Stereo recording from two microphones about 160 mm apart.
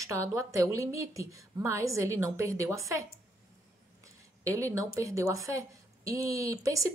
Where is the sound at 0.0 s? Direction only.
20° right (ahead or behind).